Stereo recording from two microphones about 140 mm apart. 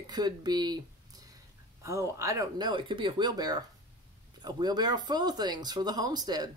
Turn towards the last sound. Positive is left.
turn(degrees=-30)  # may be behind; listen again after turning